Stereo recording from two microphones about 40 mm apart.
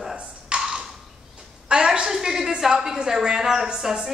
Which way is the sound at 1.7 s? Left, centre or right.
Right.